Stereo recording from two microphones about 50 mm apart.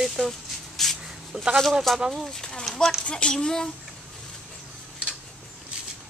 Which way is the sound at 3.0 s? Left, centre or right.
Centre.